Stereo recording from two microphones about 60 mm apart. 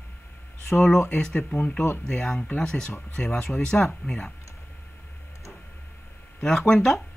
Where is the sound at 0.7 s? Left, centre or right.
Centre.